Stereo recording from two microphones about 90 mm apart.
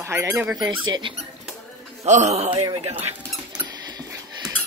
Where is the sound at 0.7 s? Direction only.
60° right (ahead or behind).